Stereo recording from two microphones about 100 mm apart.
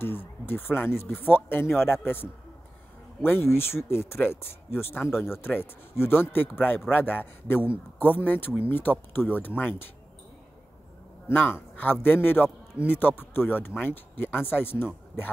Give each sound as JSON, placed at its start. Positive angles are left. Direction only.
{"t": 0.0, "sound": "speech", "side_deg": 20}
{"t": 3.3, "sound": "speech", "side_deg": 25}
{"t": 11.2, "sound": "a man's voice", "side_deg": 20}